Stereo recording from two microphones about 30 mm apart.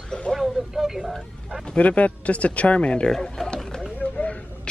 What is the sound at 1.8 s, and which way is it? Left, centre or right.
Speech, left.